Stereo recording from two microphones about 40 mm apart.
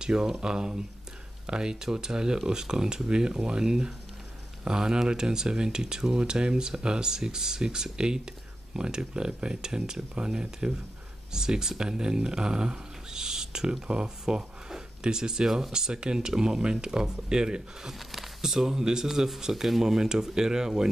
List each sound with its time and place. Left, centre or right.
0.0 s speech: centre
17.9 s speech: centre